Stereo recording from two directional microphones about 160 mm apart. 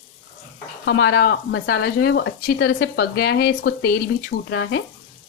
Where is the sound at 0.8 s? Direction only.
90° left.